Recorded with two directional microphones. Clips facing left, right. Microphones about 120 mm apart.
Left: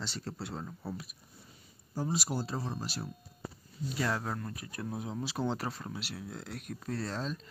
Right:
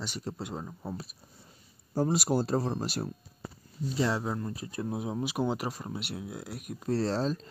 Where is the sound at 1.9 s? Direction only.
55° right (ahead or behind).